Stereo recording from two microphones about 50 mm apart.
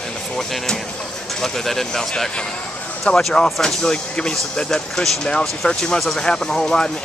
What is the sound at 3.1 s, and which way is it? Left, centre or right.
Speech, left.